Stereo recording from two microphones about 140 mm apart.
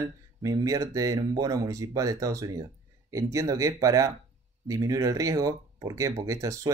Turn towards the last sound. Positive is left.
turn(degrees=-25)  # may be behind; listen again after turning